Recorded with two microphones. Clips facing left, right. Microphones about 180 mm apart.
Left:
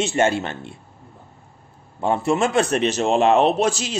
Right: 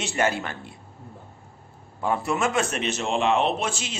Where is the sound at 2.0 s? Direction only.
25° left (ahead or behind).